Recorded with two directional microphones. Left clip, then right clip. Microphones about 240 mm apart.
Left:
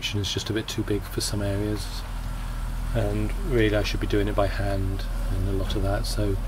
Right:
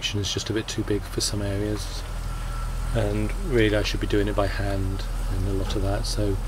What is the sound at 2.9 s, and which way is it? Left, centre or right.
Speech, centre.